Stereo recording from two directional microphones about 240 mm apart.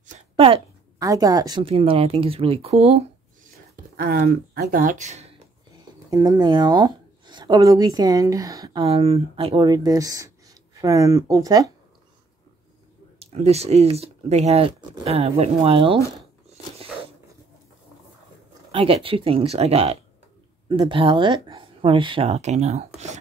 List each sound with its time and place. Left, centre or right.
0.0 s a woman's voice: right
3.9 s speech: right
6.0 s speech: centre
13.2 s speech: right
18.7 s speech: right